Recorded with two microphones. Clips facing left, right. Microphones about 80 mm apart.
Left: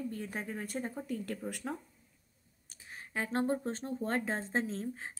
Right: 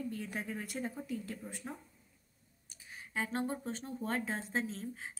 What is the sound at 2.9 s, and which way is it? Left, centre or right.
A woman's voice, left.